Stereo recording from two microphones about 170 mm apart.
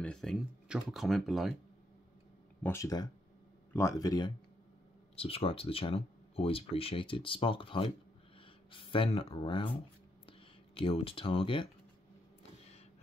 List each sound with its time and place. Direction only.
0.0 s speech: 5° left (ahead or behind)
2.6 s speech: 15° left (ahead or behind)
5.1 s speech: 35° left (ahead or behind)